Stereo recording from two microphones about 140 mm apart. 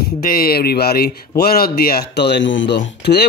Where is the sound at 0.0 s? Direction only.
90° left.